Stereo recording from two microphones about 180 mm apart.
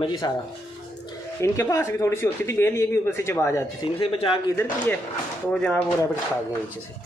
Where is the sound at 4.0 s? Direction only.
30° left (ahead or behind).